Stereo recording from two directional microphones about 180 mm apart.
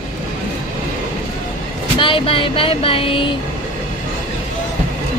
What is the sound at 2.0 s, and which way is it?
Speech, 30° left (ahead or behind).